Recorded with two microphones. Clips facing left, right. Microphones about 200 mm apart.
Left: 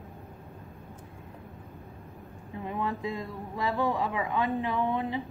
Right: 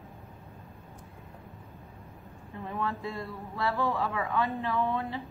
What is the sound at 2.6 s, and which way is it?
A woman's voice, 15° left (ahead or behind).